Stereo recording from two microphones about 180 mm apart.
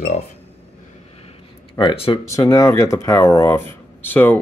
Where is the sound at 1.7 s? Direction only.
30° left (ahead or behind).